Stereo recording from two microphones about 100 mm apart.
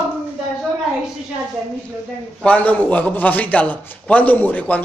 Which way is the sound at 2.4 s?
15° left (ahead or behind).